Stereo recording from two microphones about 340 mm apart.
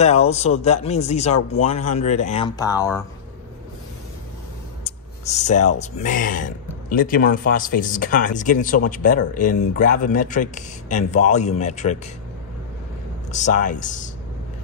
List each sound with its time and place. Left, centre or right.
0.0 s speech: centre
4.8 s a sound: centre
5.8 s speech: left
13.3 s speech: left